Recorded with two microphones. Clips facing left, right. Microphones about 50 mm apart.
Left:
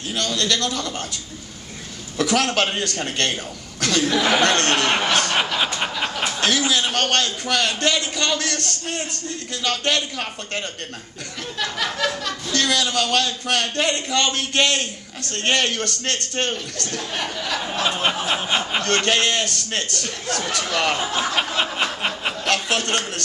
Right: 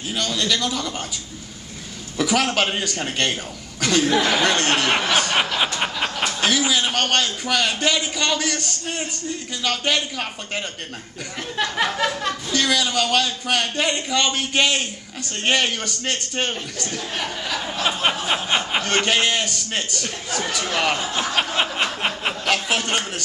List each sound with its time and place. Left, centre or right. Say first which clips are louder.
0.1 s a man's voice: even; centre
2.1 s a man's voice: even; centre
11.5 s a sound: right 3 dB; right
11.9 s a man's voice: right 1 dB; centre
18.2 s a man's voice: even; centre